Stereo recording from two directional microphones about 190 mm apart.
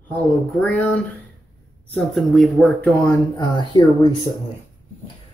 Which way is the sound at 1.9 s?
Centre (ahead or behind).